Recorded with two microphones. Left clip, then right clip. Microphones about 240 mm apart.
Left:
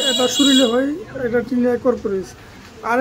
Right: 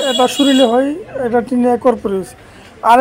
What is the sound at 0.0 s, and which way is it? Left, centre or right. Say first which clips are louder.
A woman's voice: right 3 dB; centre.